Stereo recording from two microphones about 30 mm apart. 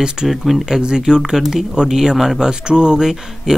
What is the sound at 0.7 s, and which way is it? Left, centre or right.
Speech, right.